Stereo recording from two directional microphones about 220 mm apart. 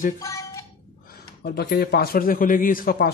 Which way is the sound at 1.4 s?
45° left (ahead or behind).